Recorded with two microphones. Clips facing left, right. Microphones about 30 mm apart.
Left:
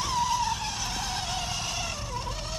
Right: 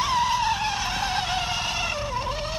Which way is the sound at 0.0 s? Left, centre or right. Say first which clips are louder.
Right 4 dB; right.